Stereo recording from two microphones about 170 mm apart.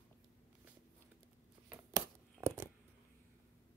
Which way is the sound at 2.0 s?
15° right (ahead or behind).